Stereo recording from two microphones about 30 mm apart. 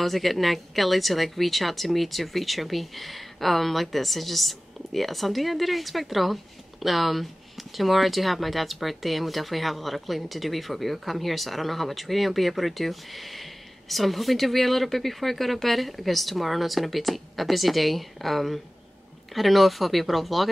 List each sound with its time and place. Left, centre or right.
0.0 s speech: centre